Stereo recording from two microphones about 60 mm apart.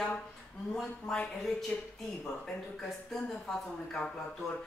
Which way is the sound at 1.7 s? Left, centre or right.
Left.